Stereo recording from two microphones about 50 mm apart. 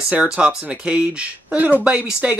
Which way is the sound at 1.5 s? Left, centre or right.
Right.